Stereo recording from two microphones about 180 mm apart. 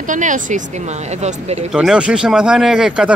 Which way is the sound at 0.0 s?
45° right (ahead or behind).